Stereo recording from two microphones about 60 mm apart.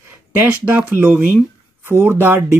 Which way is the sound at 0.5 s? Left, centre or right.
Right.